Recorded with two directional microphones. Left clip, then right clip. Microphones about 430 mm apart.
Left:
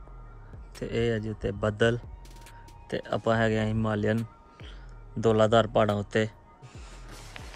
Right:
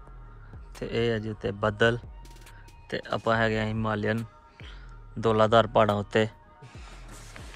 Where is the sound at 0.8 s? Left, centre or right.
Centre.